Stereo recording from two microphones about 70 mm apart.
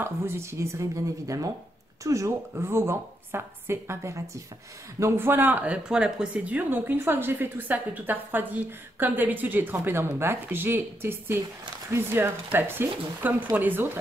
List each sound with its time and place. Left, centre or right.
0.0 s a woman's voice: right
2.5 s a woman's voice: right
6.8 s a woman's voice: right